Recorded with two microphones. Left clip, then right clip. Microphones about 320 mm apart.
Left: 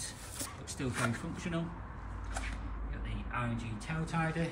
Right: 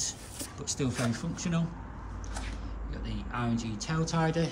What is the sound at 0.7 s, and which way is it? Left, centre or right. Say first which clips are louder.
Speech: right 3 dB; centre.